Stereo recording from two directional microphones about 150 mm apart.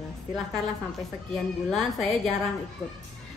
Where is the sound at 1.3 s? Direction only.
Centre (ahead or behind).